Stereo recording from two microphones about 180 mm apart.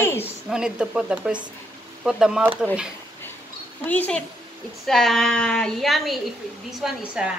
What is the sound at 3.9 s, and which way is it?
A woman's voice, 10° left (ahead or behind).